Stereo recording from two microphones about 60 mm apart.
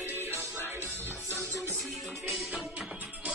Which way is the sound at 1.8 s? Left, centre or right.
Centre.